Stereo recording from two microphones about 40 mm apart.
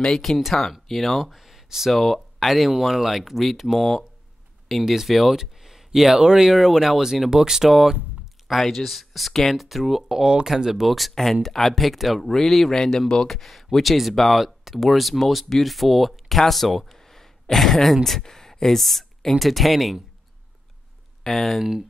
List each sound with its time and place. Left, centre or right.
0.1 s speech: centre
1.2 s a sound: centre
1.9 s speech: centre
5.3 s a sound: centre
6.4 s speech: centre
8.5 s speech: centre
21.2 s speech: centre